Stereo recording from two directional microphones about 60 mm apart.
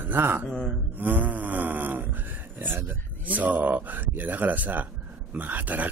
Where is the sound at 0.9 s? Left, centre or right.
Right.